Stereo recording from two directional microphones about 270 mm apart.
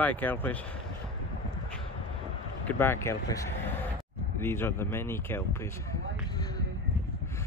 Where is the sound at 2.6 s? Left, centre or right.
Centre.